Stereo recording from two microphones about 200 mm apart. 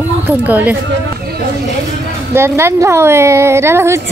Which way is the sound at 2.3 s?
10° right (ahead or behind).